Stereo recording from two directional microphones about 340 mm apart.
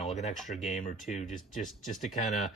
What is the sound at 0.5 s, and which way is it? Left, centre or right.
Speech, left.